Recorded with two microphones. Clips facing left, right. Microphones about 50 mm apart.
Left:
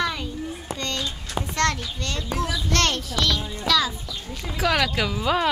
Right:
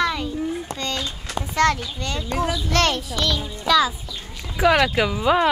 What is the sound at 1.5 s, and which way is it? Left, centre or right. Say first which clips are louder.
A child's voice: right 5 dB; centre.